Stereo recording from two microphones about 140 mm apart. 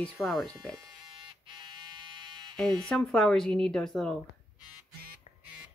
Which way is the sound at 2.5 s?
Centre (ahead or behind).